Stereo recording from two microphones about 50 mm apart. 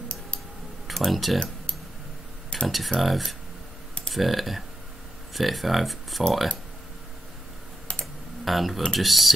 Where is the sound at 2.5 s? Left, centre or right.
Centre.